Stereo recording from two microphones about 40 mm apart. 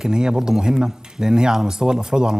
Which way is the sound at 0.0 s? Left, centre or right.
Centre.